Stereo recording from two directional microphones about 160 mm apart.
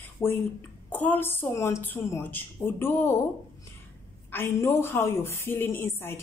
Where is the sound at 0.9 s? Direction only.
10° left (ahead or behind).